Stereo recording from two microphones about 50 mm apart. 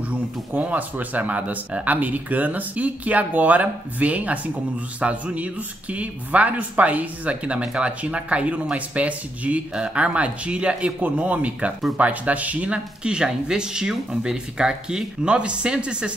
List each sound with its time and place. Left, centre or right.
0.1 s speech: right